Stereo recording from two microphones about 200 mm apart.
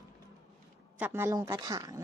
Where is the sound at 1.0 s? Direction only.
10° right (ahead or behind).